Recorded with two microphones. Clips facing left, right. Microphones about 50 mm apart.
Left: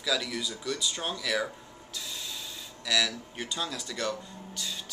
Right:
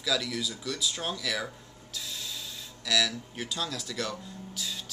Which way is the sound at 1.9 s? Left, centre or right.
Centre.